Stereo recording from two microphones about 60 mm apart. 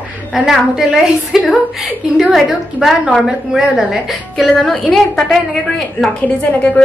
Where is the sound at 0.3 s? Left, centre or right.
Centre.